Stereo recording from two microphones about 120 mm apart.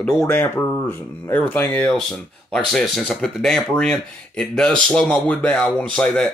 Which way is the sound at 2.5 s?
5° left (ahead or behind).